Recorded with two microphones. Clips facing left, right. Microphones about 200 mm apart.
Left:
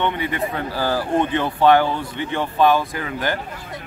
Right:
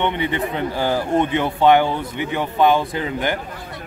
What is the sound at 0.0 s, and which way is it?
Speech, 20° right (ahead or behind).